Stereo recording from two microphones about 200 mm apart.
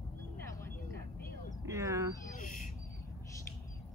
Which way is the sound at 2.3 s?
40° left (ahead or behind).